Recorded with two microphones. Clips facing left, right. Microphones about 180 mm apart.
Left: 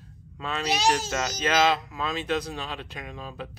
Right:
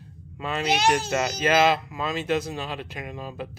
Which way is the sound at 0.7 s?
60° right (ahead or behind).